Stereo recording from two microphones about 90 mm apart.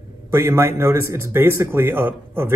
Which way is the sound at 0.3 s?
30° right (ahead or behind).